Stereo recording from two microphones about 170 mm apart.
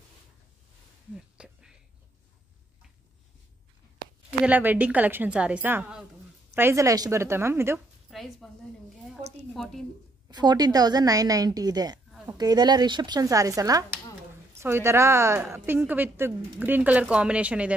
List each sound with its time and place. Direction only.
1.1 s a sound: 5° right (ahead or behind)
4.5 s a woman's voice: 10° right (ahead or behind)
8.1 s a woman's voice: centre (ahead or behind)
9.5 s a woman's voice: centre (ahead or behind)
10.2 s a woman's voice: 25° right (ahead or behind); by 17.7 s 5° right (ahead or behind)